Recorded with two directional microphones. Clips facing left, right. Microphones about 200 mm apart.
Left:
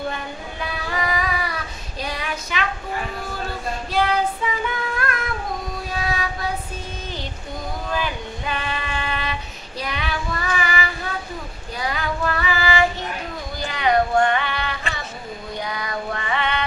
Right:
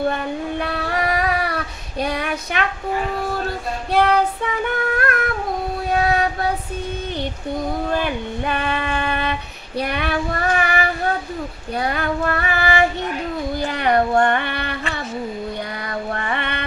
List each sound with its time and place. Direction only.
0.1 s child singing: 65° right (ahead or behind)
3.9 s child singing: 60° right (ahead or behind)
5.9 s a sound: 60° right (ahead or behind)
7.9 s female singing: 55° right (ahead or behind)
11.8 s child singing: 55° right (ahead or behind)
15.7 s music: 55° right (ahead or behind)